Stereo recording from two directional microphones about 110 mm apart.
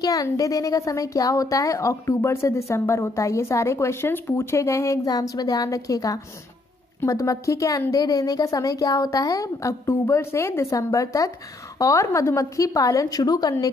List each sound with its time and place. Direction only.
0.0 s a woman's voice: 35° left (ahead or behind)